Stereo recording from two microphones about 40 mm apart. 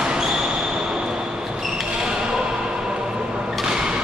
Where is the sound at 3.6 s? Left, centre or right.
Centre.